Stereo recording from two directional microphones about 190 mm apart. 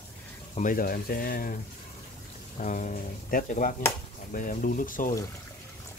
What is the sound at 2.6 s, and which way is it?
Speech, 40° left (ahead or behind).